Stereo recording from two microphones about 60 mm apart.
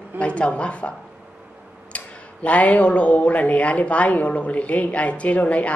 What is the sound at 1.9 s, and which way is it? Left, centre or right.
A woman's voice, left.